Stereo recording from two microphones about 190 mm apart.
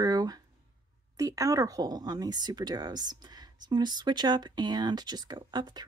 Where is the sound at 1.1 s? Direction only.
20° right (ahead or behind).